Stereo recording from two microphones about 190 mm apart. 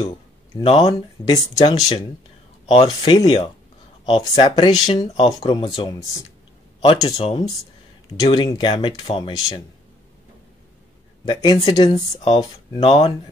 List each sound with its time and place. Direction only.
0.6 s speech: 30° left (ahead or behind)
6.8 s speech: 30° left (ahead or behind)
11.2 s speech: 25° left (ahead or behind)